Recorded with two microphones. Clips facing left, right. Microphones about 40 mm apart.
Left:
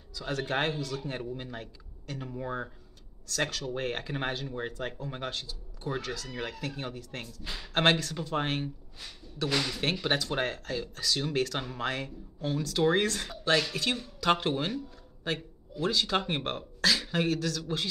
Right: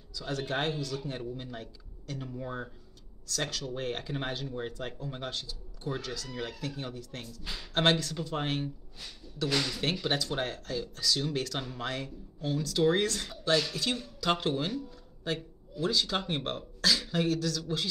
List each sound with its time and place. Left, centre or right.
0.1 s speech: left
3.3 s speech: left
7.4 s speech: centre